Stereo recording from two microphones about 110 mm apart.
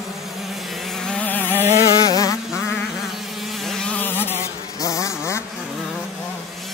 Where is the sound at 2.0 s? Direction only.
35° left (ahead or behind).